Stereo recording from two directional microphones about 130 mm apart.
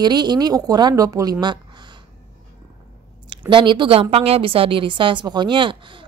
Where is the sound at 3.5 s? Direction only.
40° right (ahead or behind).